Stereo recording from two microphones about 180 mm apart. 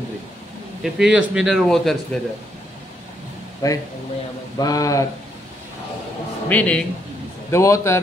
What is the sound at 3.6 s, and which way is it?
Speech, 20° left (ahead or behind).